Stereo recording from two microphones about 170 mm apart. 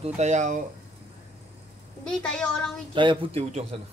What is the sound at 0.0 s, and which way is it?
Speech, 40° right (ahead or behind).